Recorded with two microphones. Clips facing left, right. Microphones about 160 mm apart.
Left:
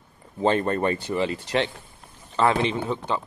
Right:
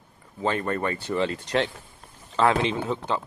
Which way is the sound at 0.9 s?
10° left (ahead or behind).